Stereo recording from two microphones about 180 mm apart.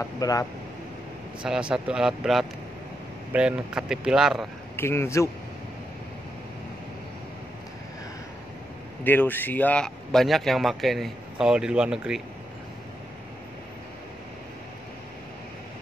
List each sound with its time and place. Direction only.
0.0 s speech: 20° left (ahead or behind)
1.4 s speech: 5° right (ahead or behind)
4.7 s a man's voice: 15° left (ahead or behind)
9.0 s speech: 10° left (ahead or behind)